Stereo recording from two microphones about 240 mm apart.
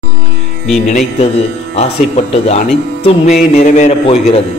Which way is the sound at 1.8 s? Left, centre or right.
Left.